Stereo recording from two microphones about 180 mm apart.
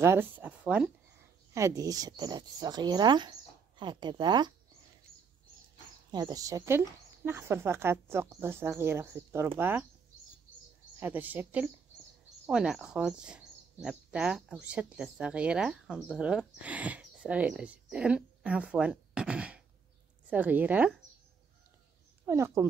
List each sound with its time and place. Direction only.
0.0 s speech: 15° right (ahead or behind)
1.5 s speech: 20° right (ahead or behind)
6.1 s speech: 20° right (ahead or behind)
11.0 s speech: 10° right (ahead or behind)
22.2 s speech: 15° right (ahead or behind)